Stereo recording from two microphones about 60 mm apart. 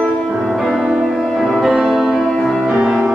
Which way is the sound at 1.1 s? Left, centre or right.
Centre.